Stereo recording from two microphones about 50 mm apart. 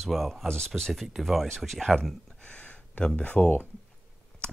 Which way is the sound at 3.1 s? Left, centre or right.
Left.